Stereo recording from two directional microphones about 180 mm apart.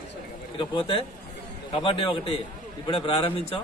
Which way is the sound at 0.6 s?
30° left (ahead or behind).